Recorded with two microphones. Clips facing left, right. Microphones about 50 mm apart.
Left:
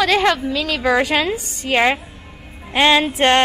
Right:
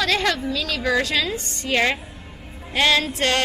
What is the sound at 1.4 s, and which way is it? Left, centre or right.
Speech, centre.